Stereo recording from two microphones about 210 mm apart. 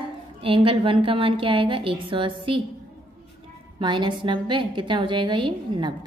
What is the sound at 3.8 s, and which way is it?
A woman's voice, 20° right (ahead or behind).